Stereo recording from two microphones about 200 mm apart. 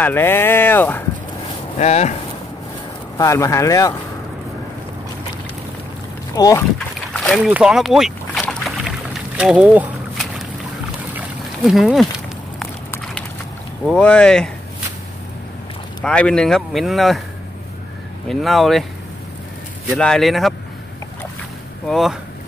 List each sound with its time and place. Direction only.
0.0 s speech: 10° left (ahead or behind)
1.8 s speech: 35° left (ahead or behind)
3.2 s speech: 15° left (ahead or behind)
6.3 s speech: 20° left (ahead or behind)
7.4 s boat: 5° right (ahead or behind)
11.1 s a sound: centre (ahead or behind)
13.8 s speech: 5° left (ahead or behind)
16.0 s speech: 5° left (ahead or behind)
18.3 s speech: centre (ahead or behind)
20.0 s speech: 5° left (ahead or behind)
21.8 s speech: centre (ahead or behind)